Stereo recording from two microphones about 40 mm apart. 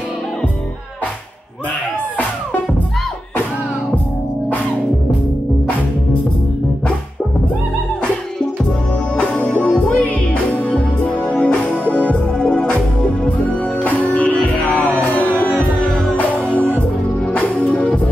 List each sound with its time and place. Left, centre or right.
9.2 s music: left
11.2 s music: left
13.8 s music: left
16.4 s music: left